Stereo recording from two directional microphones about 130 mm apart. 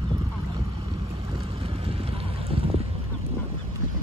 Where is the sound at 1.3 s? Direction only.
50° right (ahead or behind).